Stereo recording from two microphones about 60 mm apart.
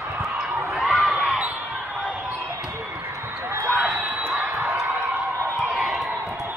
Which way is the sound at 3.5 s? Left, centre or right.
Right.